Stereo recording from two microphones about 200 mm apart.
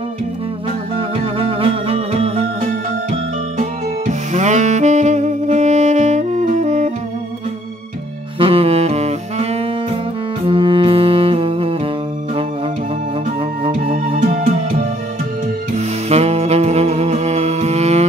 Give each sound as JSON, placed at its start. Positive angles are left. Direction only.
{"t": 0.9, "sound": "music", "side_deg": -30}
{"t": 3.1, "sound": "saxophone", "side_deg": -40}
{"t": 8.4, "sound": "music", "side_deg": -30}
{"t": 13.7, "sound": "music", "side_deg": -40}
{"t": 15.7, "sound": "saxophone", "side_deg": -30}